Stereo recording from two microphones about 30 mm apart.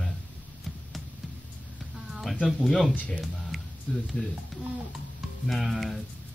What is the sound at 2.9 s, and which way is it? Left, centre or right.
Speech, left.